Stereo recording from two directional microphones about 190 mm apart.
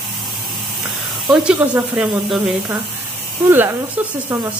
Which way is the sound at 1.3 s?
5° right (ahead or behind).